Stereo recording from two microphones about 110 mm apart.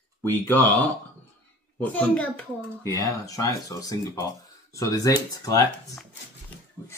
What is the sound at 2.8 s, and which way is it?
Speech, 30° left (ahead or behind).